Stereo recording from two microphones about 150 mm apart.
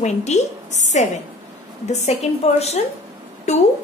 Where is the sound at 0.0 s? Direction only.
50° left (ahead or behind).